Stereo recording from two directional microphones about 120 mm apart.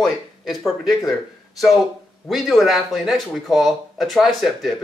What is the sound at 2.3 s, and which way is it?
Speech, centre (ahead or behind).